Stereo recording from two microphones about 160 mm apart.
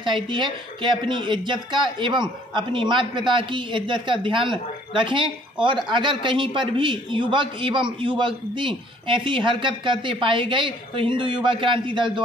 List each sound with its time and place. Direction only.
0.0 s speech: 30° right (ahead or behind)